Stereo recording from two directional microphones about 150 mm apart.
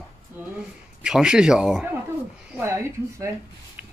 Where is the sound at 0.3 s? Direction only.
10° right (ahead or behind).